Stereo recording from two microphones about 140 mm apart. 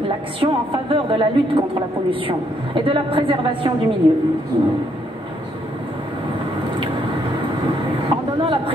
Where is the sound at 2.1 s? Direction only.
40° right (ahead or behind).